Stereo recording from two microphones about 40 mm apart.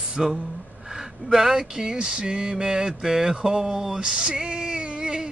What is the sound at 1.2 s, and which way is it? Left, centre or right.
Speech, centre.